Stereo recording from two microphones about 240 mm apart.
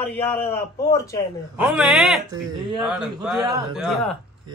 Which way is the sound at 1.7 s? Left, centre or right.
Centre.